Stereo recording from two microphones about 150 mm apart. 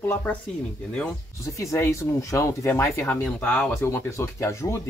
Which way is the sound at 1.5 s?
20° left (ahead or behind).